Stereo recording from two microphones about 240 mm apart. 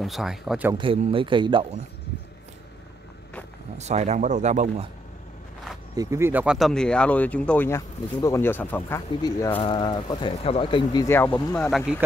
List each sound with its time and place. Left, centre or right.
0.0 s speech: centre
0.7 s speech: right
3.7 s speech: right
5.9 s speech: centre